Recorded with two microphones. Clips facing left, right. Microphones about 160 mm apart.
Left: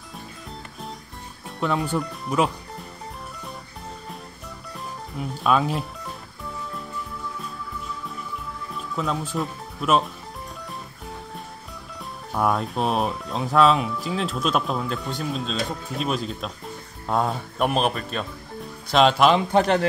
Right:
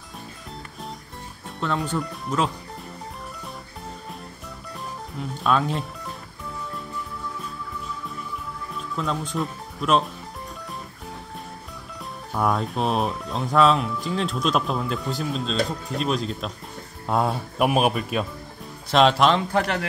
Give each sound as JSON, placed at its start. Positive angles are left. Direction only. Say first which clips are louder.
{"t": 1.6, "sound": "speech", "louder": "left 2 dB", "side_deg": 10}
{"t": 5.4, "sound": "speech", "louder": "left 1 dB", "side_deg": 5}
{"t": 8.7, "sound": "speech", "louder": "left 1 dB", "side_deg": 5}
{"t": 12.3, "sound": "speech", "louder": "left 1 dB", "side_deg": 0}
{"t": 19.5, "sound": "speech", "louder": "left 5 dB", "side_deg": 25}